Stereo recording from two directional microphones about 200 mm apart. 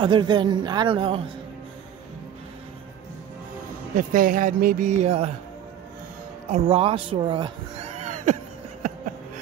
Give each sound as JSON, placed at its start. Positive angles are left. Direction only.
{"t": 0.0, "sound": "speech", "side_deg": -20}
{"t": 3.9, "sound": "speech", "side_deg": -45}
{"t": 6.5, "sound": "speech", "side_deg": -25}